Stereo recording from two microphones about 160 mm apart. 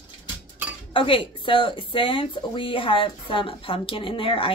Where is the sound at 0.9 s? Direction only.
35° left (ahead or behind).